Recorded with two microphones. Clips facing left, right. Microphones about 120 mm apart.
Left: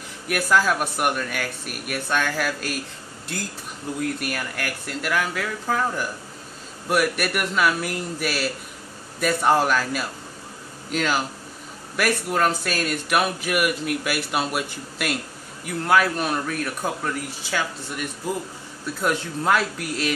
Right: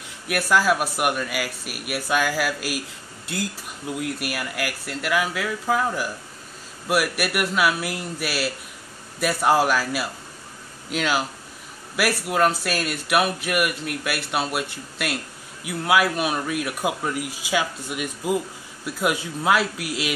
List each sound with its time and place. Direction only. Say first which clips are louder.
0.3 s speech: right 1 dB; 5° right (ahead or behind)